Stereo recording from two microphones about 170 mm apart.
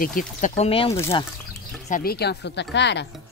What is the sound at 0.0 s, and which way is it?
Speech, 55° left (ahead or behind).